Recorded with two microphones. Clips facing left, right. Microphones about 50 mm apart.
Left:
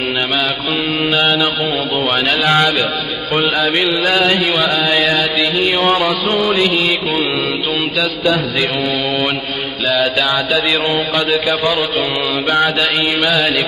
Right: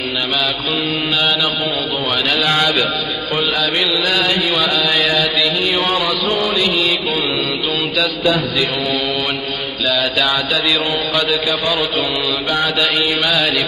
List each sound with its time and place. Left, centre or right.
1.1 s mantra: left
2.4 s a man's voice: centre
3.3 s mantra: left
3.9 s mantra: left
4.5 s mantra: left
4.8 s a man's voice: centre
5.9 s mantra: left
6.5 s mantra: left
9.9 s mantra: centre
13.2 s a man's voice: centre